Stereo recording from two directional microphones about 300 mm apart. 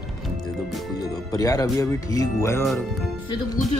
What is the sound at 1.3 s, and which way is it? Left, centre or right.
Speech, centre.